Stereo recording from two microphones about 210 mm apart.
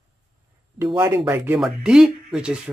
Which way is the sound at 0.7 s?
20° right (ahead or behind).